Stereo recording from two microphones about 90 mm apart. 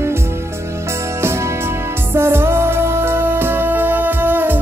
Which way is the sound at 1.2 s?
30° right (ahead or behind).